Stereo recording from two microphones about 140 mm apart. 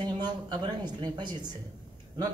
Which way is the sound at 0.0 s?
35° right (ahead or behind).